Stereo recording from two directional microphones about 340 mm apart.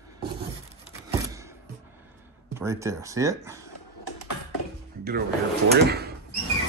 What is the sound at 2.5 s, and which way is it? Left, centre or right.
Speech, centre.